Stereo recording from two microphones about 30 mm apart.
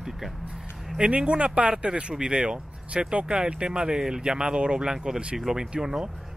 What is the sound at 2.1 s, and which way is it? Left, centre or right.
Speech, right.